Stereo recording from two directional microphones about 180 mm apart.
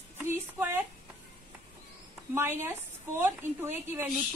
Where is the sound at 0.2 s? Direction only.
15° right (ahead or behind).